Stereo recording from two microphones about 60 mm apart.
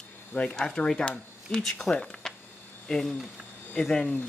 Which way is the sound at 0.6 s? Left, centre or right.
Centre.